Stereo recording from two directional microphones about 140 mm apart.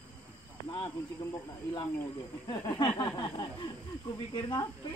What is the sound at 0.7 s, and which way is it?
Speech, 30° left (ahead or behind).